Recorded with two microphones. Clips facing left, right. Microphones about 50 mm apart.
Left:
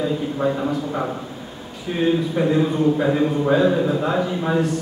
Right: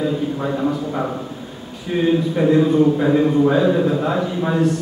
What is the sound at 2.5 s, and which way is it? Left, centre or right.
A man's voice, centre.